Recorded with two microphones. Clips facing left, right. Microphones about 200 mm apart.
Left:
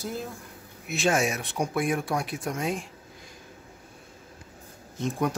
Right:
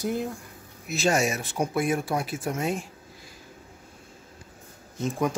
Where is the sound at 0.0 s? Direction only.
15° right (ahead or behind).